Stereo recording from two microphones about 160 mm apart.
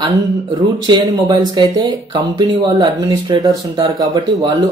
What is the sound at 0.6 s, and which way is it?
Speech, 25° right (ahead or behind).